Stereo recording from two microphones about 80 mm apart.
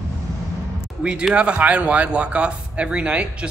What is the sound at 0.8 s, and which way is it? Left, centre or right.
Speech, centre.